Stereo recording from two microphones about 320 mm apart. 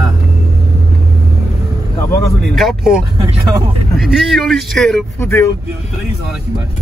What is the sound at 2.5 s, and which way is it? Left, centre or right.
A man's voice, centre.